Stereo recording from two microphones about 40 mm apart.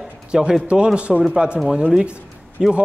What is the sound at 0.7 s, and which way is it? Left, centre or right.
Speech, right.